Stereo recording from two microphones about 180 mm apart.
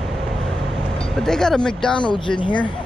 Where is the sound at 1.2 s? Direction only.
5° left (ahead or behind).